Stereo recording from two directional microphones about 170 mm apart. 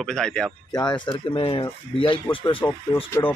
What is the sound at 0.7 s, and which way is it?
Speech, 25° left (ahead or behind).